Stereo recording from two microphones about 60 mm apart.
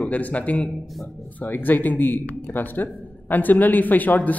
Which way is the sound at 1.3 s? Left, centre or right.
Left.